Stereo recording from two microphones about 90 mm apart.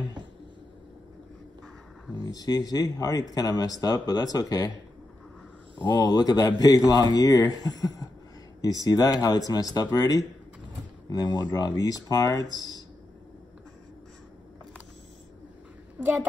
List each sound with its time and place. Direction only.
2.2 s speech: 45° left (ahead or behind)
5.8 s speech: 50° left (ahead or behind)
16.0 s a woman's voice: 20° right (ahead or behind)